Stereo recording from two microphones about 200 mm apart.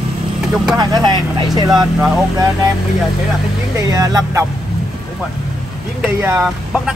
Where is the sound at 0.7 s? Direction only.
20° right (ahead or behind).